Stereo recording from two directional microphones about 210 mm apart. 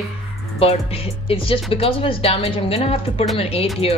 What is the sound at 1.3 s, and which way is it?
A woman's voice, 25° left (ahead or behind).